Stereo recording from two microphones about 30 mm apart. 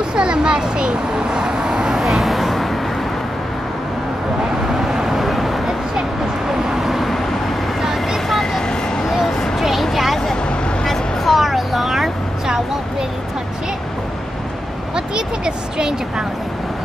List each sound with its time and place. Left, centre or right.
0.1 s vehicle: right; by 2.2 s centre
2.2 s vehicle: centre
4.7 s vehicle: centre
6.8 s vehicle: centre
8.3 s vehicle: centre
11.2 s a sound: centre
15.0 s a sound: right